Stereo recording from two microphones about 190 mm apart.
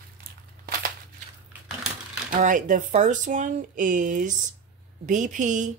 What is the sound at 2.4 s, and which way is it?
A woman's voice, 45° right (ahead or behind).